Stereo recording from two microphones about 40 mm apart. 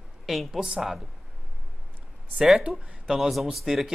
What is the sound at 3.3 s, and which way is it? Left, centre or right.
Speech, centre.